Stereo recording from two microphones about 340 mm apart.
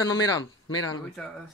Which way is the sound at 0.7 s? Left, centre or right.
Left.